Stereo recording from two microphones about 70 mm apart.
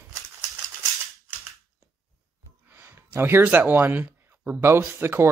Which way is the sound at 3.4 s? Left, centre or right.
Right.